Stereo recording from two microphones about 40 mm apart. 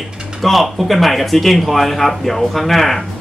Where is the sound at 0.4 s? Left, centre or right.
Centre.